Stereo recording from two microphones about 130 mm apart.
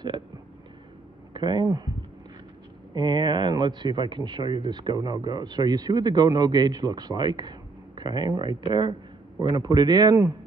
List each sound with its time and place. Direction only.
1.3 s speech: 35° right (ahead or behind)
2.9 s speech: 35° right (ahead or behind)